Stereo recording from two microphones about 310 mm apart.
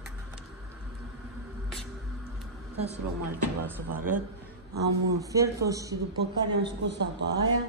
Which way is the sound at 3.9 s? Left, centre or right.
Right.